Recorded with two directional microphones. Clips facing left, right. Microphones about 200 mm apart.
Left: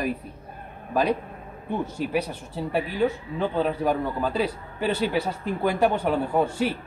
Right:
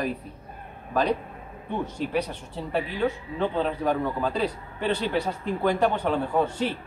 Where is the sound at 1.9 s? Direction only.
10° left (ahead or behind).